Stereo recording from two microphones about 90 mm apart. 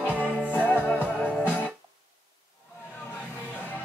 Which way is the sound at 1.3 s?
15° right (ahead or behind).